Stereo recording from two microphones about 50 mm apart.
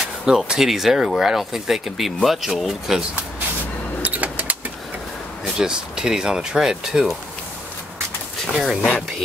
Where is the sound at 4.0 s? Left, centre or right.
Right.